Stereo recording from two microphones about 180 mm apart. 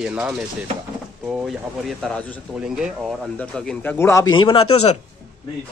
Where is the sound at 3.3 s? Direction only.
5° left (ahead or behind); by 4.9 s 35° left (ahead or behind).